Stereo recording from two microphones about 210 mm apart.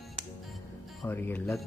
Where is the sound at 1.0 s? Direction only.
10° left (ahead or behind).